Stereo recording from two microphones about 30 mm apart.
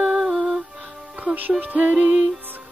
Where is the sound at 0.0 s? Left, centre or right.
Centre.